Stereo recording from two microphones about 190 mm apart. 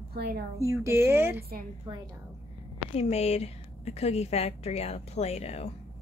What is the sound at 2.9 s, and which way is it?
A woman's voice, 35° left (ahead or behind).